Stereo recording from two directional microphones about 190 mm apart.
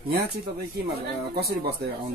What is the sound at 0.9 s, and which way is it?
Speech, 55° right (ahead or behind).